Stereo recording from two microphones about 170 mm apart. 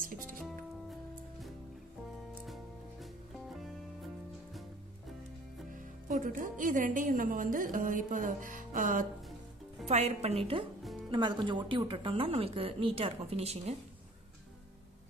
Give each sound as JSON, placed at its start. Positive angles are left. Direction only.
{"t": 0.0, "sound": "speech", "side_deg": -55}
{"t": 2.4, "sound": "music", "side_deg": 0}
{"t": 6.0, "sound": "speech", "side_deg": -50}
{"t": 9.8, "sound": "speech", "side_deg": -40}